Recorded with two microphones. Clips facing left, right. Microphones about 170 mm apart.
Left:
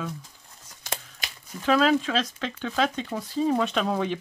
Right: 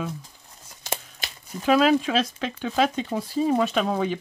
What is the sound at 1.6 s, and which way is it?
Speech, 10° right (ahead or behind).